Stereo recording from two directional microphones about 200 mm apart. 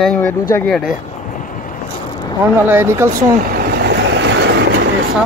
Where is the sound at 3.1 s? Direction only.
50° right (ahead or behind).